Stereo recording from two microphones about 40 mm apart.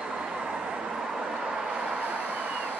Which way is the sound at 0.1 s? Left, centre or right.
Centre.